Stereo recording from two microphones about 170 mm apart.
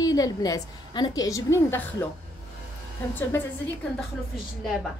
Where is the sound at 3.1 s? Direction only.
10° left (ahead or behind).